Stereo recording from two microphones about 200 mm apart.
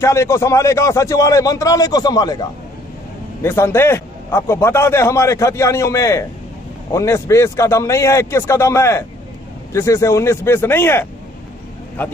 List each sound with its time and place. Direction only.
0.0 s a man's voice: 15° left (ahead or behind)
3.4 s a man's voice: 10° left (ahead or behind)